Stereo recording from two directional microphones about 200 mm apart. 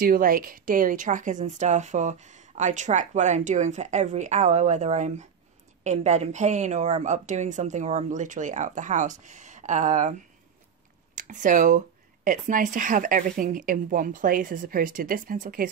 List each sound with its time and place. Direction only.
0.0 s speech: 45° right (ahead or behind)
11.1 s a woman's voice: 40° right (ahead or behind)